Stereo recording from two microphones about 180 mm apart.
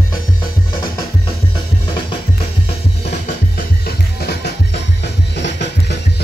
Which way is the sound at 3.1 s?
60° left (ahead or behind).